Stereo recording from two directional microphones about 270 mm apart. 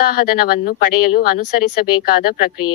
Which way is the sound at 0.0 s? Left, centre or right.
Left.